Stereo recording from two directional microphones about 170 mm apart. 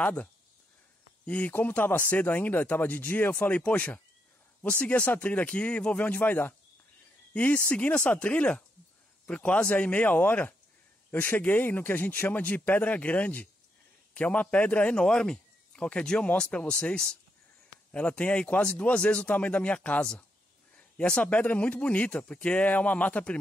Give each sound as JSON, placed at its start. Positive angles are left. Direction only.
{"t": 0.0, "sound": "a man's voice", "side_deg": 5}